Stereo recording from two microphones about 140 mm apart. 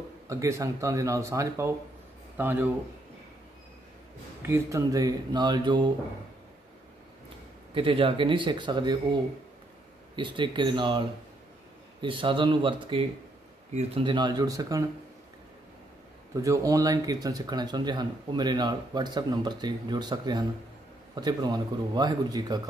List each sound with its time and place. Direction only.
0.3 s speech: 20° right (ahead or behind)
4.4 s speech: 20° right (ahead or behind)
7.7 s speech: 40° right (ahead or behind); by 14.9 s 25° right (ahead or behind)
16.3 s speech: 25° right (ahead or behind)